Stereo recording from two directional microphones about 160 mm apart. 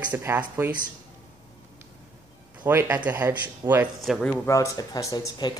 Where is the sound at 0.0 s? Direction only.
10° right (ahead or behind).